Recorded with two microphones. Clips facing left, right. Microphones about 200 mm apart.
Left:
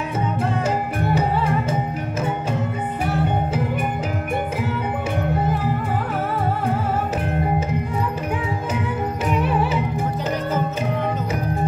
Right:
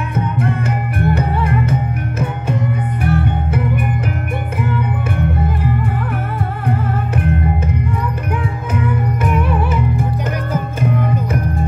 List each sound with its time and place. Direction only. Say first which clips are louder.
0.4 s music: right 1 dB; 60° right (ahead or behind)
8.7 s music: right 5 dB; 55° right (ahead or behind)